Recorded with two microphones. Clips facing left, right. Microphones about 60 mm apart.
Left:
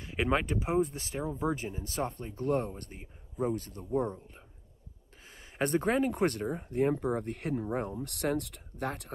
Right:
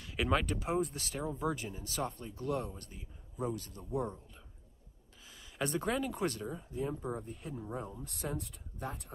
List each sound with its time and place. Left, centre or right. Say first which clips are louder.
0.0 s speech: left 3 dB; left
5.6 s speech: left 6 dB; left